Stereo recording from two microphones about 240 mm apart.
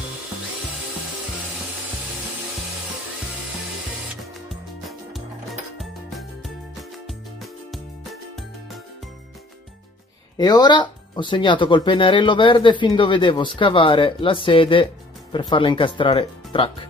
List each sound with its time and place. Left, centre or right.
4.5 s music: centre
10.3 s speech: centre